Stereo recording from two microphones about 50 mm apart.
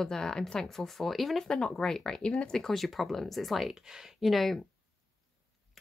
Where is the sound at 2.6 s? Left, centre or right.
Centre.